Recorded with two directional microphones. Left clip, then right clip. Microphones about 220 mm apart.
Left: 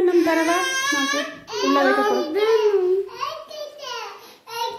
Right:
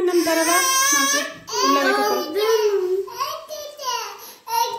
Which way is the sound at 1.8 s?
25° left (ahead or behind).